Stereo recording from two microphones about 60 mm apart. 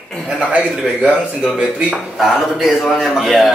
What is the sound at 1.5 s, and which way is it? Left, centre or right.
Speech, centre.